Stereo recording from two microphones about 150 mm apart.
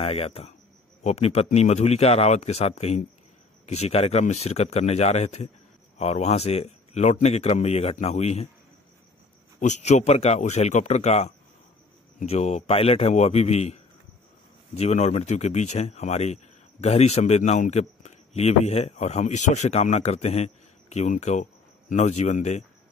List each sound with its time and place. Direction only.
0.0 s a man's voice: 40° left (ahead or behind)
9.6 s a man's voice: 50° left (ahead or behind)